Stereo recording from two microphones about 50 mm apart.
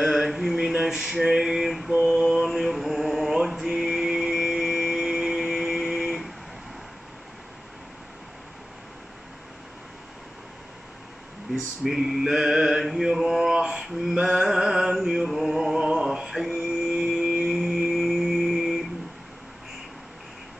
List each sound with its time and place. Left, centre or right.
0.0 s male singing: centre
2.0 s mantra: centre
11.5 s mantra: centre
13.6 s a sound: centre
14.1 s chant: centre
17.2 s music: right
17.5 s singing bowl: centre
17.8 s music: centre